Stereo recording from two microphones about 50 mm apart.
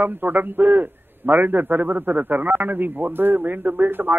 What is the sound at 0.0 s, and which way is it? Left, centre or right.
A man's voice, right.